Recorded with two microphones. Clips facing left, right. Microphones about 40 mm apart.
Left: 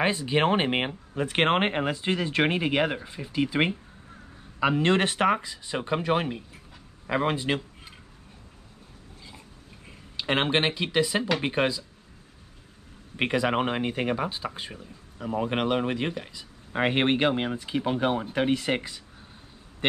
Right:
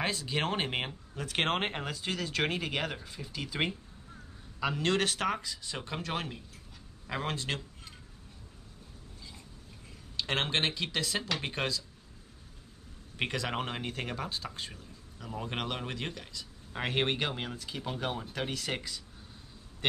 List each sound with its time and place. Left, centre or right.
0.0 s speech: left
10.1 s speech: left
13.1 s speech: left